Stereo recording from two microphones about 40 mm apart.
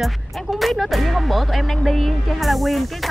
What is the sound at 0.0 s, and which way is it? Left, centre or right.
Speech, centre.